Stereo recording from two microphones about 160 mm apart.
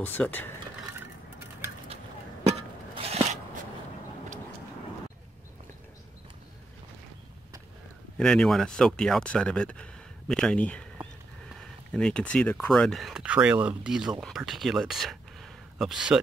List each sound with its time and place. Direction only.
0.0 s speech: 10° left (ahead or behind)
2.4 s a sound: 40° right (ahead or behind)
8.2 s speech: 5° left (ahead or behind)
11.9 s speech: 5° left (ahead or behind)